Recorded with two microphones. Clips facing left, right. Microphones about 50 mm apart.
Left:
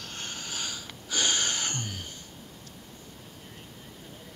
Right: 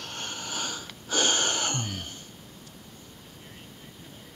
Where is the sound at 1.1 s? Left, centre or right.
Right.